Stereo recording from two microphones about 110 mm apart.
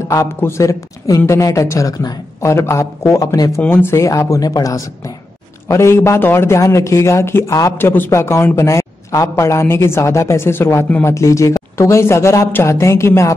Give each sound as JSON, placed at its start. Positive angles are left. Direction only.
{"t": 0.1, "sound": "speech", "side_deg": 25}
{"t": 3.6, "sound": "speech", "side_deg": 20}